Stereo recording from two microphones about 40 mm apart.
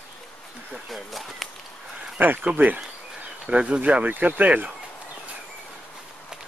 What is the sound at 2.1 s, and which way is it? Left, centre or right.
Speech, right.